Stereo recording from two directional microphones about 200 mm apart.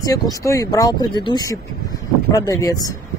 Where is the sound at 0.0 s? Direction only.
20° left (ahead or behind).